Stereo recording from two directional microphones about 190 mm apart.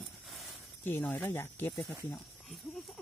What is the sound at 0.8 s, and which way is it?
Speech, 10° left (ahead or behind).